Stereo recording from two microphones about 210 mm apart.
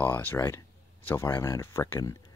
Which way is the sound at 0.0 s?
10° left (ahead or behind).